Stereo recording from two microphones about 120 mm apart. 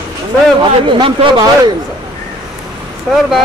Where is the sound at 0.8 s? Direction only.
40° right (ahead or behind).